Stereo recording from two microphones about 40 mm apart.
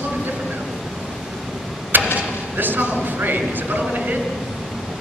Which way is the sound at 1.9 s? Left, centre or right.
Right.